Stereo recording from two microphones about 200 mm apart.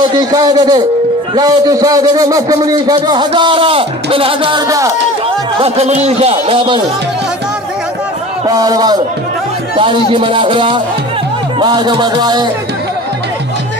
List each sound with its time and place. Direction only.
0.0 s a man's voice: 20° right (ahead or behind)
5.6 s speech: 30° right (ahead or behind)
8.5 s a man's voice: 20° right (ahead or behind)